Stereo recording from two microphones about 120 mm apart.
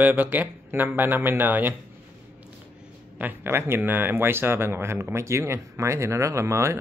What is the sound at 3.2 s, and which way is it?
Speech, 20° right (ahead or behind).